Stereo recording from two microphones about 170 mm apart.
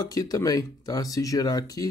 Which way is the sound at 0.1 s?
20° left (ahead or behind).